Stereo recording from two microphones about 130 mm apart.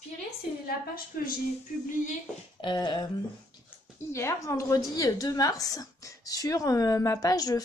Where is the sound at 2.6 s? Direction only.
35° left (ahead or behind).